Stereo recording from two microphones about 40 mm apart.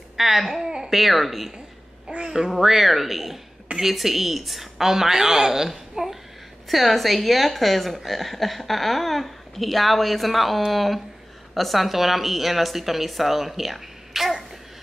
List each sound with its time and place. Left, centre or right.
0.2 s a woman's voice: centre
0.5 s speech: centre
0.8 s a woman's voice: centre
2.0 s a child's voice: right
2.5 s a woman's voice: centre